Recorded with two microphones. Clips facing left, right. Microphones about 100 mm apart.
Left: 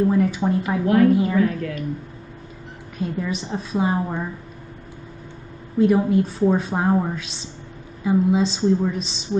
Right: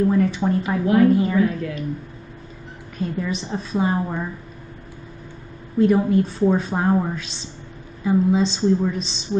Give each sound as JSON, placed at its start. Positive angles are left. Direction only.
{"t": 0.0, "sound": "speech", "side_deg": 10}
{"t": 1.4, "sound": "a woman's voice", "side_deg": -20}
{"t": 3.0, "sound": "speech", "side_deg": 5}
{"t": 5.8, "sound": "speech", "side_deg": 5}